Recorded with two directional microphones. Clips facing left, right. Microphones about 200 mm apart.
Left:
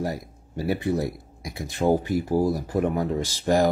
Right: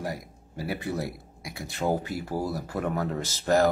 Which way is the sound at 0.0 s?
25° left (ahead or behind).